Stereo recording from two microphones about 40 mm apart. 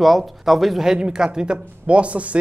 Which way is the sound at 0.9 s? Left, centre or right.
Centre.